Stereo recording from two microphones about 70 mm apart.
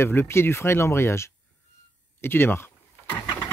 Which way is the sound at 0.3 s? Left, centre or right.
Left.